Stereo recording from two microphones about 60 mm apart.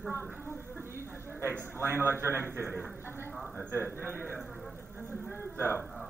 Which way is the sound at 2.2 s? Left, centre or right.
Right.